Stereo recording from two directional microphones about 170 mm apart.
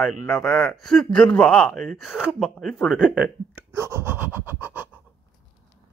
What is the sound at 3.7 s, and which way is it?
Scratch, 15° right (ahead or behind).